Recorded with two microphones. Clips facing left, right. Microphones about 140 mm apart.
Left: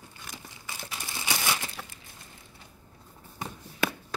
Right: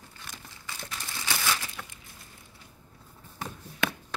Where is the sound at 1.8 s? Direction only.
10° left (ahead or behind).